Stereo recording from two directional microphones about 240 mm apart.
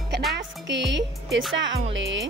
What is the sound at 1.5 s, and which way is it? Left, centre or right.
Music, right.